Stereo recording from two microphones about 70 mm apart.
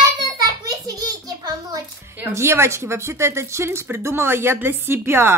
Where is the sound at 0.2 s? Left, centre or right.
Right.